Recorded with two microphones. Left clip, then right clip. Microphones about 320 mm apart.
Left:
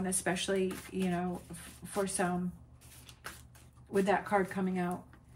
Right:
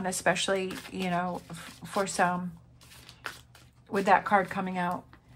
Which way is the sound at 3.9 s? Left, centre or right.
Centre.